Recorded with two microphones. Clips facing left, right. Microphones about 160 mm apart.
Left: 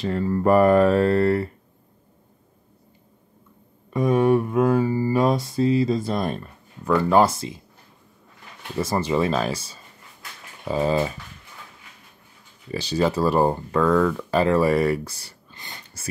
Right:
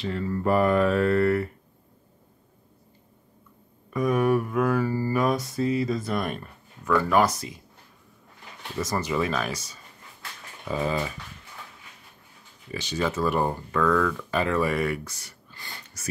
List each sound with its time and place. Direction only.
0.0 s speech: 40° left (ahead or behind)
3.9 s mantra: 25° left (ahead or behind)
8.7 s mantra: 30° left (ahead or behind)
10.7 s speech: 30° left (ahead or behind)
12.7 s speech: 35° left (ahead or behind)
15.5 s a sound: 20° left (ahead or behind)